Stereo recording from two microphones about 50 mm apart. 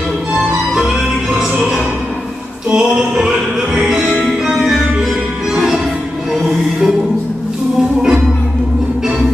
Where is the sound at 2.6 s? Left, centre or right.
Centre.